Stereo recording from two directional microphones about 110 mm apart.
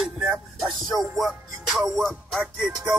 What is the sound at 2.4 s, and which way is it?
Music, 10° right (ahead or behind).